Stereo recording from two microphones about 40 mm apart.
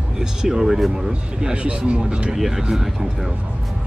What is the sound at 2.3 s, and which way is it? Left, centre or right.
Speech, centre.